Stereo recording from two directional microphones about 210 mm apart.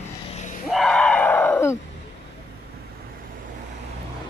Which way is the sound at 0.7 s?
Centre (ahead or behind).